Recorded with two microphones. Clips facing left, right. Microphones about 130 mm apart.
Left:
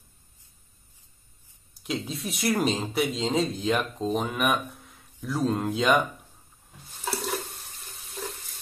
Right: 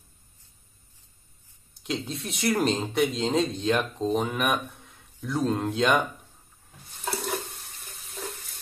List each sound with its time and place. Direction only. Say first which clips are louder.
1.8 s speech: even; centre (ahead or behind)
7.8 s stir: left 1 dB; centre (ahead or behind)